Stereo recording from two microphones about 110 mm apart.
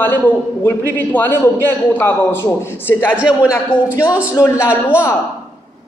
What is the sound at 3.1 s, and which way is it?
Speech, 10° right (ahead or behind).